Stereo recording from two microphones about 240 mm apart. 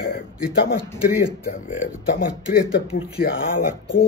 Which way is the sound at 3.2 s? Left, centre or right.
Left.